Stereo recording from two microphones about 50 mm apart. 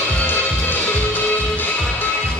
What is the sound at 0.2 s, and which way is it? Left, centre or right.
Music, left.